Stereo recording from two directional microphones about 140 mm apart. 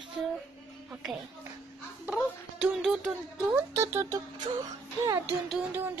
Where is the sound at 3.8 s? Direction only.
20° right (ahead or behind).